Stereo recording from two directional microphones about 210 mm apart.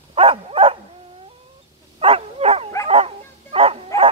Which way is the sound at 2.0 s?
30° right (ahead or behind).